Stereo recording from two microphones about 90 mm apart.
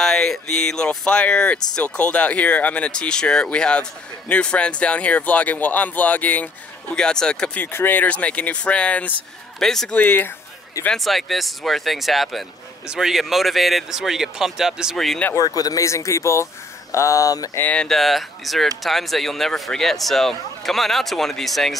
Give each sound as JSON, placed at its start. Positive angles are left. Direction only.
{"t": 0.0, "sound": "speech", "side_deg": 5}
{"t": 7.0, "sound": "speech", "side_deg": 10}
{"t": 7.6, "sound": "speech", "side_deg": 20}
{"t": 9.9, "sound": "speech", "side_deg": 20}
{"t": 10.9, "sound": "speech", "side_deg": 0}
{"t": 15.3, "sound": "speech", "side_deg": 45}
{"t": 17.6, "sound": "speech", "side_deg": 15}
{"t": 17.8, "sound": "speech", "side_deg": 0}